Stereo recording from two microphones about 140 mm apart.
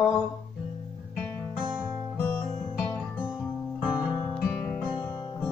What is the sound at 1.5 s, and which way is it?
Music, 5° right (ahead or behind).